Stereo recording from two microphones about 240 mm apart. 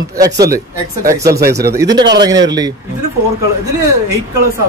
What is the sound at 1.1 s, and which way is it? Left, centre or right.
A man's voice, centre.